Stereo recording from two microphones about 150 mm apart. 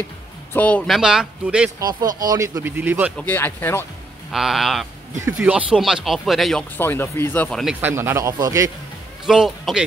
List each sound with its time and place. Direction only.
0.5 s speech: 10° left (ahead or behind)
0.9 s speech: 5° right (ahead or behind)
1.8 s speech: 25° right (ahead or behind)
3.2 s speech: 10° left (ahead or behind)
4.3 s speech: centre (ahead or behind)
6.8 s speech: 15° left (ahead or behind)
7.8 s speech: 15° right (ahead or behind)
9.2 s speech: 5° right (ahead or behind)